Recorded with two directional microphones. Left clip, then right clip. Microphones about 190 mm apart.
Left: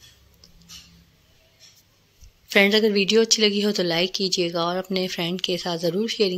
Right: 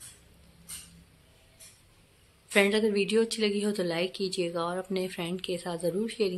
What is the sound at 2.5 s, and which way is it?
A woman's voice, 35° left (ahead or behind).